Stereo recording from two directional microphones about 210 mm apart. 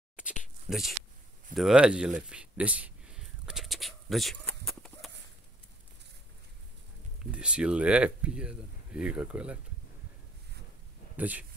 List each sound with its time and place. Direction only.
0.7 s speech: centre (ahead or behind)
1.5 s a sound: centre (ahead or behind)
7.2 s speech: 5° right (ahead or behind)
11.1 s speech: 5° right (ahead or behind)